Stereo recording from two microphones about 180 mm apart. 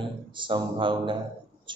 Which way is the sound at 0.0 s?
25° right (ahead or behind).